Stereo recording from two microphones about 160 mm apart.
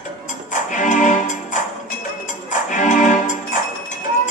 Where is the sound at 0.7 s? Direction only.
50° left (ahead or behind).